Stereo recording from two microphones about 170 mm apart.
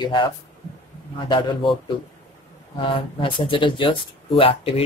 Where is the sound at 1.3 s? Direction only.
30° left (ahead or behind).